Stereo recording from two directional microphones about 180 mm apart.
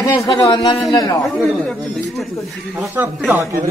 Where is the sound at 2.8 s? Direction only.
10° right (ahead or behind).